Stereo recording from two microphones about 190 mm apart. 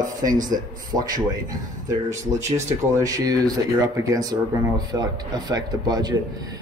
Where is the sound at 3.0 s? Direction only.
20° right (ahead or behind).